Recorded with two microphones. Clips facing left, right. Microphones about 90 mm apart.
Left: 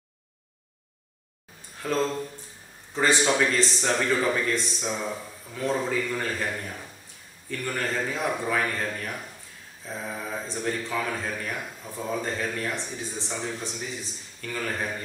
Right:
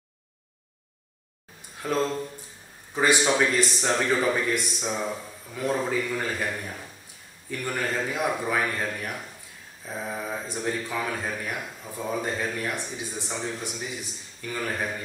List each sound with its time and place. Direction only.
1.8 s a man's voice: 15° right (ahead or behind)